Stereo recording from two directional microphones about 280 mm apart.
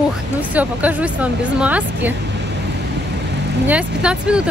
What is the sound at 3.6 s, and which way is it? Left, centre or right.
Speech, centre.